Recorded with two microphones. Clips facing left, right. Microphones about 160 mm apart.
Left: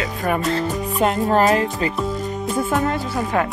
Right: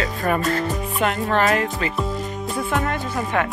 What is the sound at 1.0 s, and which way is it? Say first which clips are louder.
Speech: left 4 dB; 35° left (ahead or behind).